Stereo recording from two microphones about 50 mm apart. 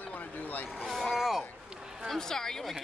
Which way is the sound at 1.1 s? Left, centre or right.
Centre.